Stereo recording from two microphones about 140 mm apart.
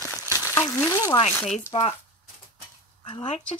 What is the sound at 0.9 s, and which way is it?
Speech, 25° left (ahead or behind).